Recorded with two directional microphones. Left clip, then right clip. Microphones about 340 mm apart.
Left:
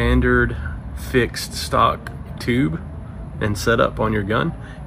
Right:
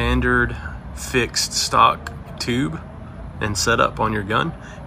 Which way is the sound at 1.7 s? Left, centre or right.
Centre.